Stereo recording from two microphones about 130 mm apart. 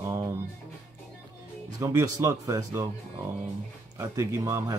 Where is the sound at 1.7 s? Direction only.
25° right (ahead or behind).